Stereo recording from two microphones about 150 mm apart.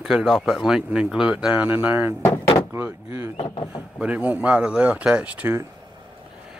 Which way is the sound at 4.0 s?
10° right (ahead or behind).